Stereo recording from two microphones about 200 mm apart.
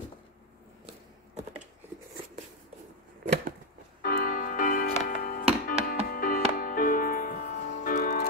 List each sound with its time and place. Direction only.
4.0 s music: 50° left (ahead or behind)